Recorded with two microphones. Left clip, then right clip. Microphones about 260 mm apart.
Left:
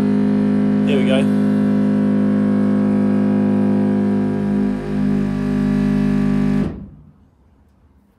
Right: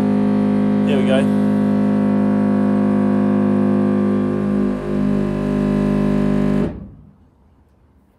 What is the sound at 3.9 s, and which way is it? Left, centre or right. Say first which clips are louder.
Music: right 1 dB; right.